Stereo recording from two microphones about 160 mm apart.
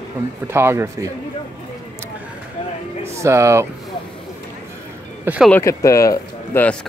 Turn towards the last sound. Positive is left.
turn(degrees=10)  # may be behind; listen again after turning